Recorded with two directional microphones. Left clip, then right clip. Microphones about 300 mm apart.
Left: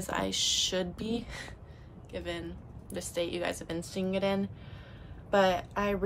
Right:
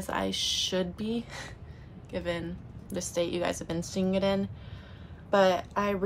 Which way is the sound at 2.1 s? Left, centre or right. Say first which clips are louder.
Right 5 dB; centre.